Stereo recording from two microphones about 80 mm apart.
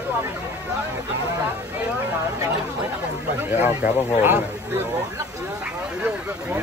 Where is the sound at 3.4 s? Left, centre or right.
Right.